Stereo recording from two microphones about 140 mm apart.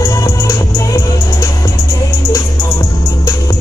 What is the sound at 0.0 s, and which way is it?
Music, 25° left (ahead or behind).